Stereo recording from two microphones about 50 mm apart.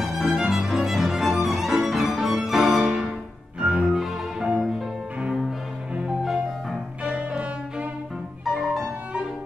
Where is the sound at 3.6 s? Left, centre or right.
Right.